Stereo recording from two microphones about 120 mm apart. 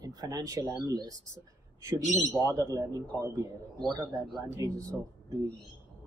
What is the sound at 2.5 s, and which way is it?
Speech, 25° right (ahead or behind).